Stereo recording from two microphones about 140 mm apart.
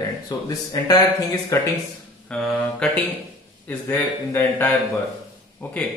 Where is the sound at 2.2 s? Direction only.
5° left (ahead or behind).